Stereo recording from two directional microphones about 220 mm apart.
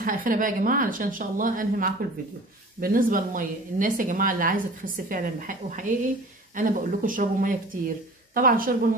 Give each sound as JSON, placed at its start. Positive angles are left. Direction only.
{"t": 0.0, "sound": "speech", "side_deg": -40}